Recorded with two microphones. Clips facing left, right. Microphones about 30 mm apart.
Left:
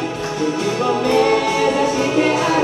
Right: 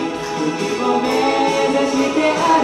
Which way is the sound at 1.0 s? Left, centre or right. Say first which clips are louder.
Left 1 dB; centre.